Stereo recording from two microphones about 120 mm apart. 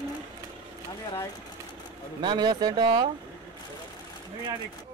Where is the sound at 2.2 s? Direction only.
35° right (ahead or behind).